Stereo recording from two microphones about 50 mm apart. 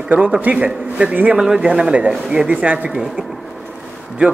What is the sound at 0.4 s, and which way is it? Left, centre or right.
Speech, right.